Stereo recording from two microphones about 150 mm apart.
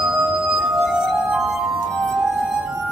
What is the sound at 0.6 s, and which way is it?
Music, centre (ahead or behind).